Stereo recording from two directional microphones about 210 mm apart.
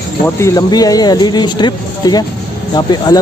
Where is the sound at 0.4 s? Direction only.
20° left (ahead or behind).